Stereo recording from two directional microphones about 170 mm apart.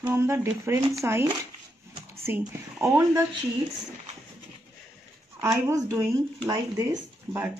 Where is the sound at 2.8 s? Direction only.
15° right (ahead or behind).